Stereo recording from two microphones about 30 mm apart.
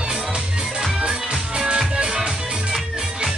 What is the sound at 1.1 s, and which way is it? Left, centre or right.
Music, right.